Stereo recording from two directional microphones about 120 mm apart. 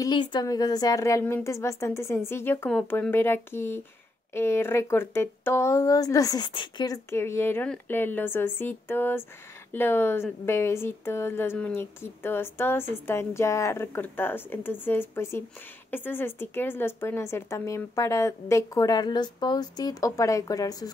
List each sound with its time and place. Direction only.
0.0 s a woman's voice: 40° left (ahead or behind)
6.4 s a woman's voice: 40° left (ahead or behind)
7.1 s a woman's voice: 20° left (ahead or behind)